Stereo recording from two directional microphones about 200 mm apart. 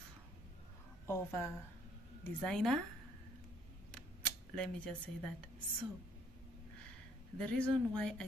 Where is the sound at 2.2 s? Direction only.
Centre (ahead or behind).